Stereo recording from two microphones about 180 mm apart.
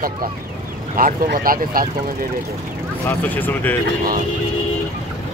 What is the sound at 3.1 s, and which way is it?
Speech, 10° left (ahead or behind).